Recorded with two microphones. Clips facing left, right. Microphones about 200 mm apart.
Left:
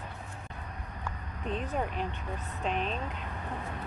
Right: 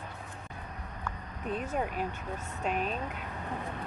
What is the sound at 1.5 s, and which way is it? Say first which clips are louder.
Speech: even; 5° right (ahead or behind).